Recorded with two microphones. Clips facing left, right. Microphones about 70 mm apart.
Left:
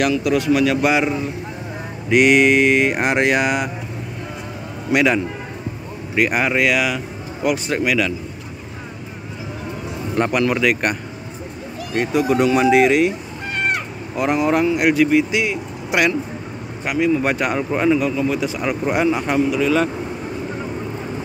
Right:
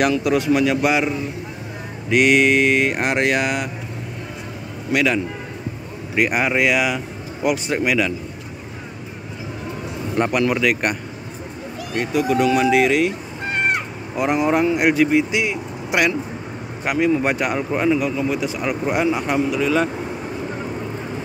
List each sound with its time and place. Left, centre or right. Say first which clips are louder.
0.2 s speech: left 1 dB; right
0.7 s speech: left 1 dB; centre
2.0 s speech: left 2 dB; centre
4.9 s speech: left 2 dB; left
6.1 s speech: left 1 dB; centre
7.8 s speech: even; right
10.1 s speech: left 1 dB; centre
12.2 s speech: left 1 dB; left
13.5 s speech: right 1 dB; centre
15.4 s speech: left 1 dB; centre
16.8 s speech: even; right
17.2 s speech: left 1 dB; centre